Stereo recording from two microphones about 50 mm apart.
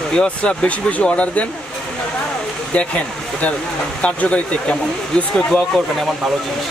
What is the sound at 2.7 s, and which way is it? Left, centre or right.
Speech, left.